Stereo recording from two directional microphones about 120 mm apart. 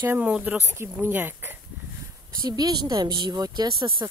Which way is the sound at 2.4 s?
35° right (ahead or behind).